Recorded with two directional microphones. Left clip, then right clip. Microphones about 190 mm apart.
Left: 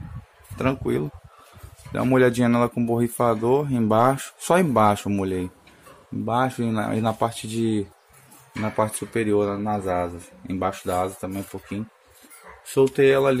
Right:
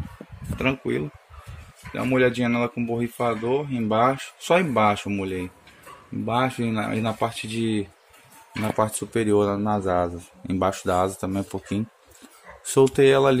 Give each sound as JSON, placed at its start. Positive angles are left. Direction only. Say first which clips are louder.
{"t": 0.6, "sound": "speech", "louder": "left 1 dB", "side_deg": 10}
{"t": 1.9, "sound": "speech", "louder": "left 2 dB", "side_deg": 30}
{"t": 6.2, "sound": "speech", "louder": "left 1 dB", "side_deg": 10}
{"t": 8.5, "sound": "a man's voice", "louder": "even", "side_deg": 0}